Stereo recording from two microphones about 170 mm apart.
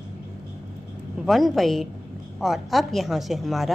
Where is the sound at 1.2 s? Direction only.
Centre (ahead or behind).